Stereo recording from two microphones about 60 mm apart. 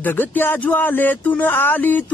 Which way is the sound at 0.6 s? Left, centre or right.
Left.